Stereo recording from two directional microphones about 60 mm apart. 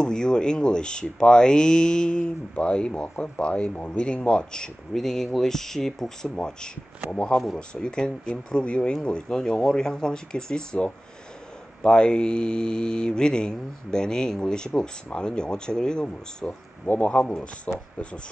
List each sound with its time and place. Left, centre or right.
0.0 s speech: centre
16.8 s speech: left